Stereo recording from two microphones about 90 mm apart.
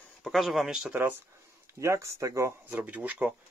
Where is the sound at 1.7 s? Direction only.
35° right (ahead or behind).